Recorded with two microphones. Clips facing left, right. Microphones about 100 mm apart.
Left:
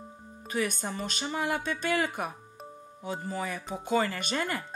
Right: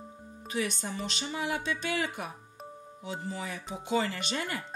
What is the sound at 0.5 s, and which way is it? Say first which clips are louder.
A woman's voice: left 2 dB; 50° left (ahead or behind).